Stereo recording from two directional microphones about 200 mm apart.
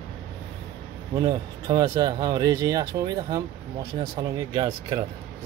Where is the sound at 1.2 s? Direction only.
20° right (ahead or behind).